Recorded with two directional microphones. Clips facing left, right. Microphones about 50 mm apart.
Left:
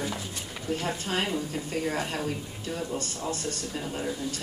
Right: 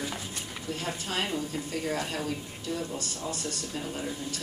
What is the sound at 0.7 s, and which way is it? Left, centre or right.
Speech, left.